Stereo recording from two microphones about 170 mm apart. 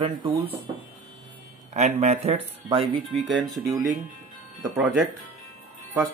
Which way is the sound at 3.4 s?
20° right (ahead or behind).